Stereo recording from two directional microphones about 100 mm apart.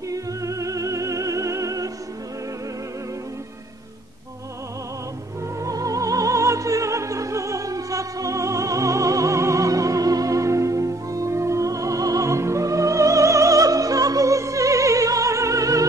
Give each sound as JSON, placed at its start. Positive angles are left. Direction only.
{"t": 0.1, "sound": "music", "side_deg": -35}
{"t": 5.6, "sound": "opera", "side_deg": -35}